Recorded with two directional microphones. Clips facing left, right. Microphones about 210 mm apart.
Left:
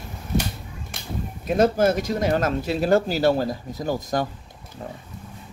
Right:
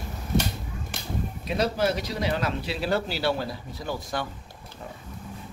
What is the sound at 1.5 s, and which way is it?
Speech, 50° left (ahead or behind).